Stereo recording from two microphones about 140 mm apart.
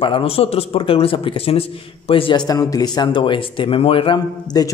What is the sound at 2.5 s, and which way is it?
Speech, 25° left (ahead or behind).